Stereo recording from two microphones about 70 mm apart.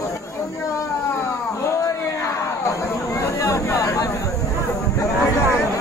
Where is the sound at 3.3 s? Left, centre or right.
Left.